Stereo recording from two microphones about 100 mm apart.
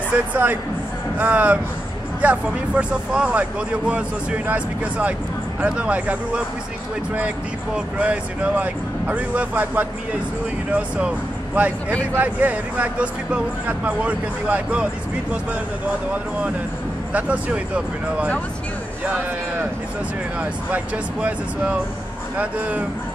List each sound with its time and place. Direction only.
0.3 s speech: 15° right (ahead or behind)
17.1 s speech: 10° right (ahead or behind)
20.3 s speech: 15° right (ahead or behind)